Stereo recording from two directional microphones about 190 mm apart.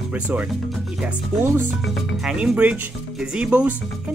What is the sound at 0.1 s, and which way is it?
Speech, 10° right (ahead or behind).